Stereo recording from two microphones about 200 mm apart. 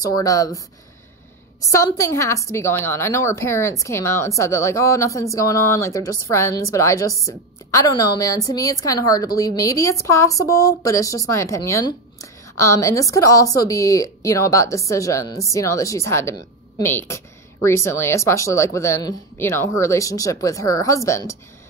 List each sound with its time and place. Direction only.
0.0 s a woman's voice: 15° left (ahead or behind)
1.6 s a woman's voice: 15° left (ahead or behind)